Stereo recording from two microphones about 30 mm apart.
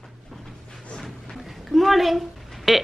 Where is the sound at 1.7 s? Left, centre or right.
Centre.